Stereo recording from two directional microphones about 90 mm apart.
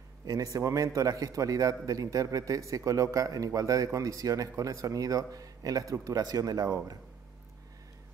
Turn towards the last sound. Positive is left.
turn(degrees=-40)  # may be behind; listen again after turning